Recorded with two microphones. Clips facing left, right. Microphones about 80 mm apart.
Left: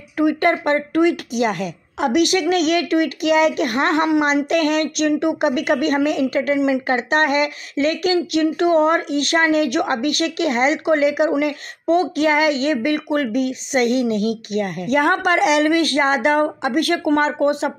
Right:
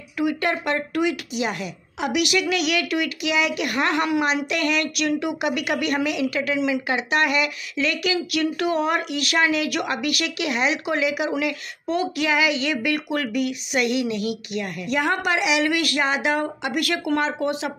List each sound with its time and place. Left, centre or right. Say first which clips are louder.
0.2 s speech: left 6 dB; left